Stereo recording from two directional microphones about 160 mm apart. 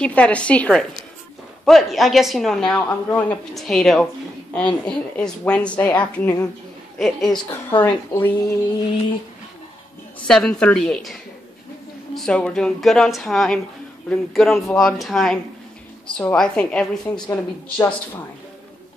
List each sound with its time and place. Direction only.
0.0 s a woman's voice: 10° left (ahead or behind)
7.8 s a woman's voice: 15° left (ahead or behind)
10.2 s a woman's voice: 5° left (ahead or behind)
17.0 s a woman's voice: 20° left (ahead or behind)